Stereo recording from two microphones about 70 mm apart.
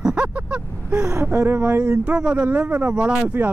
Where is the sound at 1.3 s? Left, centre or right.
Right.